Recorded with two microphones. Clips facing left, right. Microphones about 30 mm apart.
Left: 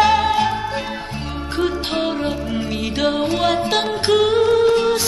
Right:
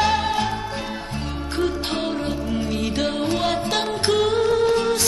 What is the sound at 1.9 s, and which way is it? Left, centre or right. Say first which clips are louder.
Music: left 4 dB; centre.